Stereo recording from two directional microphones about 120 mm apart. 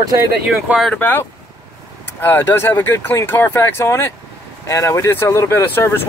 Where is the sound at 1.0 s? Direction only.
15° left (ahead or behind).